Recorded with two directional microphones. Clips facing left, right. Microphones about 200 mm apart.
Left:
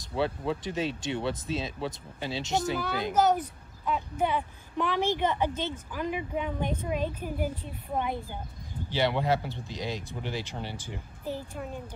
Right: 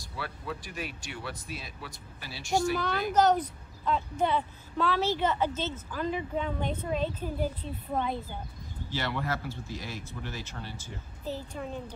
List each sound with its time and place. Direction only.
0.2 s speech: 25° left (ahead or behind)
3.2 s a woman's voice: 10° left (ahead or behind)